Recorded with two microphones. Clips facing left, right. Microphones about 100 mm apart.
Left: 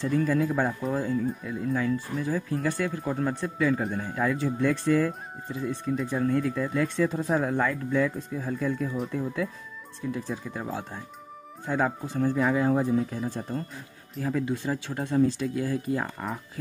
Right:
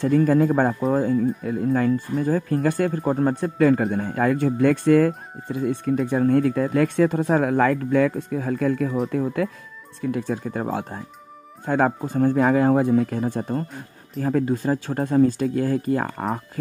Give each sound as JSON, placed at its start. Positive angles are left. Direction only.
{"t": 0.0, "sound": "speech", "side_deg": -50}